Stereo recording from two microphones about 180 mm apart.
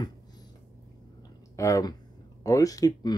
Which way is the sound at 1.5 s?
15° left (ahead or behind).